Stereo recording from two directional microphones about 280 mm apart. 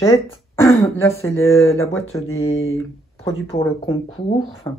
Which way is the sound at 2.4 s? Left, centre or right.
Left.